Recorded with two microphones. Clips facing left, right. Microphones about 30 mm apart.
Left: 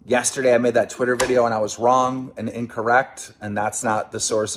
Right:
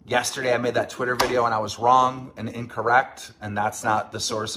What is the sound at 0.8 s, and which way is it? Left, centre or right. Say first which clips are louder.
Speech: left 3 dB; right.